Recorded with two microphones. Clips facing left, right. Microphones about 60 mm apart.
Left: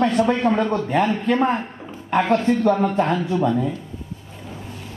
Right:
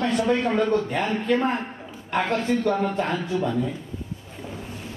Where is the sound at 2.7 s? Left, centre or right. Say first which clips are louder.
Left 5 dB; centre.